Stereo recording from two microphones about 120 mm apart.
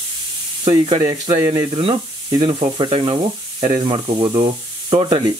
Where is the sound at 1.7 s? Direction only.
45° right (ahead or behind).